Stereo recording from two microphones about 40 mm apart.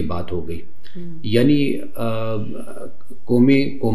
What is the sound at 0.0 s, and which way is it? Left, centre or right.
Speech, left.